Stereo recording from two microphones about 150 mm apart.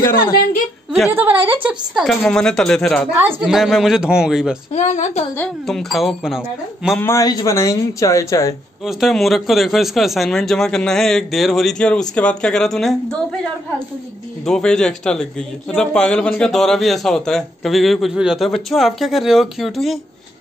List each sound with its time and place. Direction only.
1.1 s a man's voice: 10° right (ahead or behind)
4.7 s speech: 55° left (ahead or behind)
5.7 s a man's voice: centre (ahead or behind)
7.0 s speech: 20° left (ahead or behind)
8.8 s a man's voice: centre (ahead or behind)
14.4 s a man's voice: 5° left (ahead or behind)